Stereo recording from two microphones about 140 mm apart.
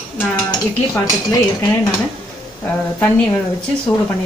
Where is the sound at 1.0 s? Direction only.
25° left (ahead or behind).